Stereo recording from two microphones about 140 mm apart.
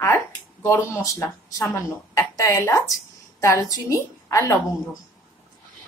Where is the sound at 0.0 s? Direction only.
15° left (ahead or behind).